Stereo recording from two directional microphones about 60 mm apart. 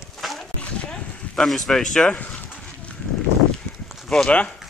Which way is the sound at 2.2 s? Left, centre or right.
Left.